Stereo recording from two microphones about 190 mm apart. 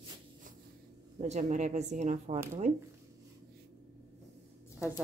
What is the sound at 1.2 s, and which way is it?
A woman's voice, 40° right (ahead or behind).